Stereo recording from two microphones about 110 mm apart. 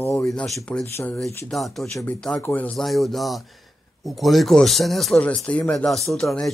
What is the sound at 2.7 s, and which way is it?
Speech, centre (ahead or behind).